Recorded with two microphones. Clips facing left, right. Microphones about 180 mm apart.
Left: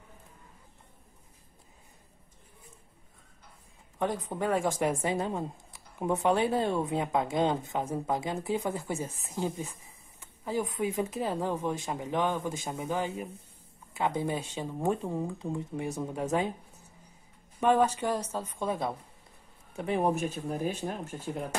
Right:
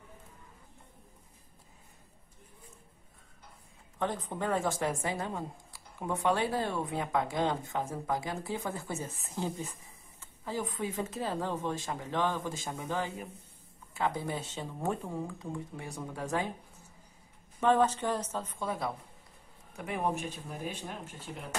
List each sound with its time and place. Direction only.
4.0 s a woman's voice: 10° left (ahead or behind)
17.6 s speech: 15° left (ahead or behind)
19.8 s a woman's voice: 30° left (ahead or behind)
20.2 s speech: 45° left (ahead or behind)